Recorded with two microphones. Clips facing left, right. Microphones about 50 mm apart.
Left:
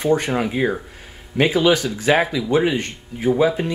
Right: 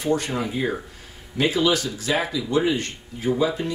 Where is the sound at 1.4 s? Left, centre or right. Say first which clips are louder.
Left 4 dB; left.